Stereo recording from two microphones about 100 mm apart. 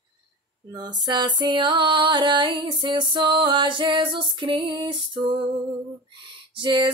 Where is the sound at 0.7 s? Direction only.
45° right (ahead or behind).